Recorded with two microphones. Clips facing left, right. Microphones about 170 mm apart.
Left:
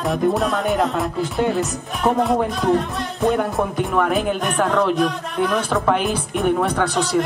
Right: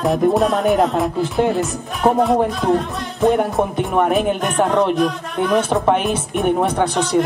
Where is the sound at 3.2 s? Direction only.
20° right (ahead or behind).